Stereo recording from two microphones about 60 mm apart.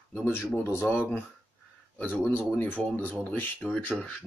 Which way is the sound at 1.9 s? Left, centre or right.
Left.